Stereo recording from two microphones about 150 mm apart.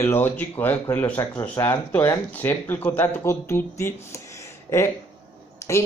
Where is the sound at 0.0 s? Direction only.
15° left (ahead or behind).